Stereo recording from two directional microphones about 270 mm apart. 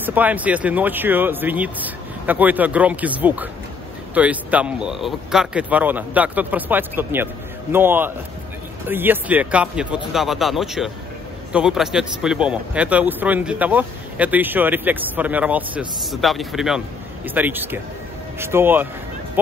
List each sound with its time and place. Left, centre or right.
0.0 s speech: centre